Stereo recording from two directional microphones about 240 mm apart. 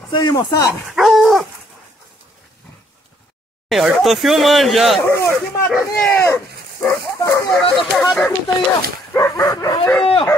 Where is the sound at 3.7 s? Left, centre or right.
Centre.